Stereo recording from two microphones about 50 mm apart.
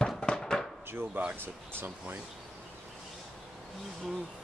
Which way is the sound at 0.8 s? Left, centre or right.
Right.